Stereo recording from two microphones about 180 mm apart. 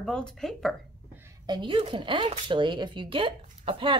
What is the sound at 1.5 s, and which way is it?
Speech, 25° right (ahead or behind).